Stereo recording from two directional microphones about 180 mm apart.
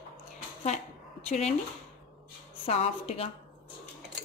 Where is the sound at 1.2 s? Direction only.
40° left (ahead or behind).